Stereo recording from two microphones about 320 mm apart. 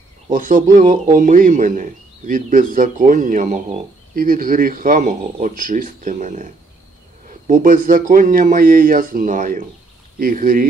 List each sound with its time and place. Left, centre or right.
0.3 s a man's voice: right